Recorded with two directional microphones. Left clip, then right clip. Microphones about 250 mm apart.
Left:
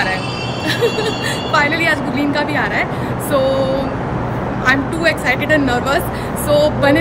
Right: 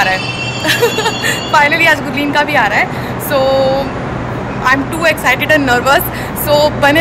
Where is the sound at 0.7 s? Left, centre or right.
Centre.